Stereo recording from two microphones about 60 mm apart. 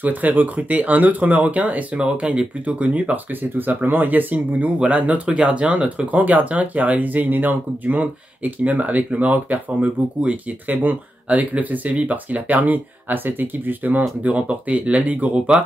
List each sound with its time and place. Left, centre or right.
0.0 s speech: right